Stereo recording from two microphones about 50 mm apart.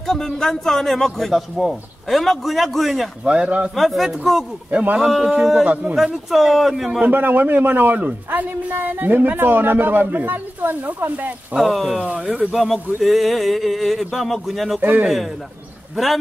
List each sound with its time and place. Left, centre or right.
0.0 s a man's voice: centre
3.3 s speech: right
3.7 s a man's voice: centre
4.6 s a woman's voice: right
4.9 s a man's voice: centre
7.1 s a woman's voice: right
11.5 s a man's voice: centre
14.8 s a woman's voice: right